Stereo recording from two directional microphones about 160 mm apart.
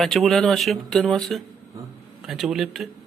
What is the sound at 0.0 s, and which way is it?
Speech, centre (ahead or behind).